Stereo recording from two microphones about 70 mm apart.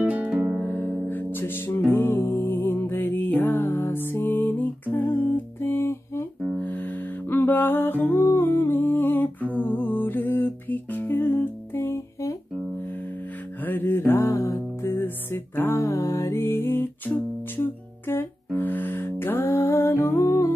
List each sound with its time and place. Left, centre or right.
0.0 s music: right
0.7 s music: left
6.6 s music: left
13.6 s mantra: left
14.3 s music: left
15.8 s music: left